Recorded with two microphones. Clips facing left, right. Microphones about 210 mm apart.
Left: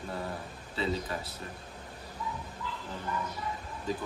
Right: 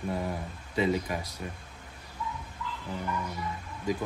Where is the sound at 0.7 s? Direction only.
15° right (ahead or behind).